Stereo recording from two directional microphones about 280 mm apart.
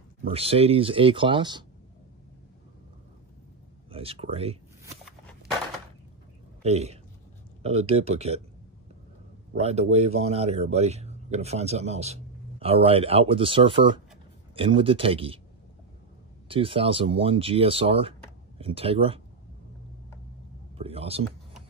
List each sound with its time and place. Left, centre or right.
0.3 s speech: right
3.9 s speech: centre
6.6 s speech: right
9.6 s speech: right
16.4 s speech: centre
20.7 s a sound: right